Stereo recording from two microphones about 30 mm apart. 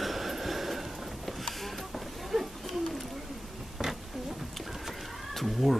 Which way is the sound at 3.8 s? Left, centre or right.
Right.